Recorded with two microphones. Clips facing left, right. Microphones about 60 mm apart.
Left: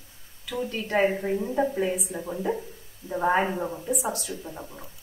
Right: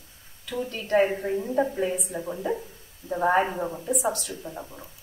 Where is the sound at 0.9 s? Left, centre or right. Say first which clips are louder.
Right 1 dB; centre.